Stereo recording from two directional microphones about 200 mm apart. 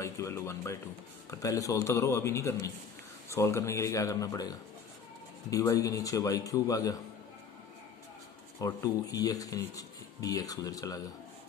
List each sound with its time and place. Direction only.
0.0 s speech: 15° left (ahead or behind)
8.5 s speech: 15° left (ahead or behind)